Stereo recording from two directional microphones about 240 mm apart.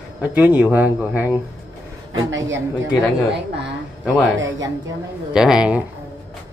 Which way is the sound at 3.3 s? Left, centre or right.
Right.